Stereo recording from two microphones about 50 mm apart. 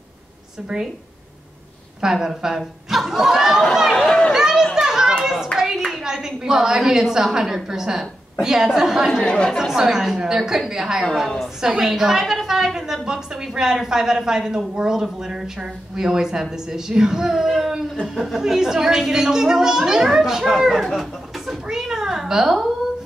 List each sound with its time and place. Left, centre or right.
0.7 s speech: centre
2.0 s speech: centre
3.9 s a sound: centre
4.3 s children playing: centre
5.2 s hands: centre
5.9 s a sound: centre
7.3 s a woman's voice: centre
9.2 s speech: centre
9.8 s a woman's voice: centre